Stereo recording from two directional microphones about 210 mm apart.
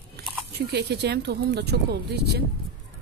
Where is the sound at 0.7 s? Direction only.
50° right (ahead or behind).